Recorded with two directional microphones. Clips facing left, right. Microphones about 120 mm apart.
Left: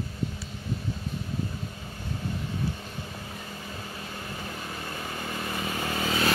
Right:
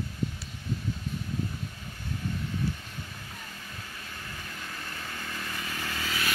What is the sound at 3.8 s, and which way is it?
Vehicle, 25° left (ahead or behind).